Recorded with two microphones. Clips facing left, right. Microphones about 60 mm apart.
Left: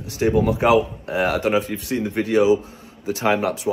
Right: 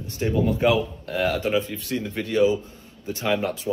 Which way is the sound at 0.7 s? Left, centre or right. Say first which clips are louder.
Left 6 dB; left.